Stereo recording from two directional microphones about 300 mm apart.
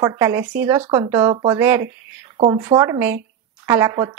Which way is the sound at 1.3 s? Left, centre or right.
Centre.